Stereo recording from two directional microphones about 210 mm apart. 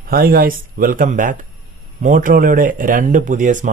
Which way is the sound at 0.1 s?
45° right (ahead or behind).